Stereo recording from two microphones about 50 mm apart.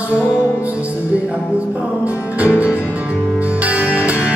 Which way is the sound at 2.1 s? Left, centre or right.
Right.